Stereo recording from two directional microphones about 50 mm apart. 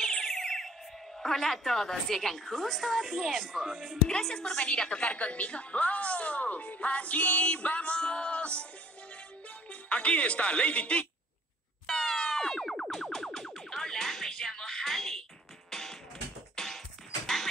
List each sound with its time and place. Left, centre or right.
0.0 s music: centre
1.2 s a woman's voice: centre
4.1 s a woman's voice: centre
9.7 s speech: left
11.8 s music: centre